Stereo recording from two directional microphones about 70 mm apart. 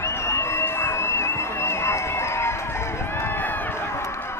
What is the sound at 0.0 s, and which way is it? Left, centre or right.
Music, left.